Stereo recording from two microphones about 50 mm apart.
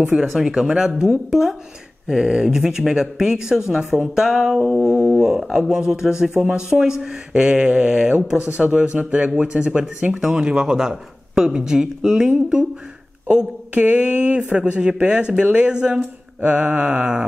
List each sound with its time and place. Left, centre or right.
0.5 s speech: centre
16.3 s mantra: right